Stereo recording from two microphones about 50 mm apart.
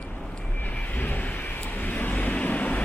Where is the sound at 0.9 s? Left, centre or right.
Left.